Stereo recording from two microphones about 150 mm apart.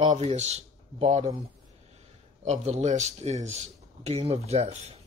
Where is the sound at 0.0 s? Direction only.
50° right (ahead or behind).